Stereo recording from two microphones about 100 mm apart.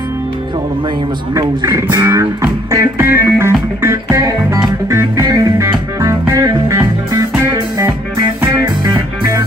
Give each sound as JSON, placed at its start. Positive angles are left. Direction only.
{"t": 1.7, "sound": "music", "side_deg": -25}
{"t": 4.2, "sound": "music", "side_deg": -35}
{"t": 8.6, "sound": "music", "side_deg": -50}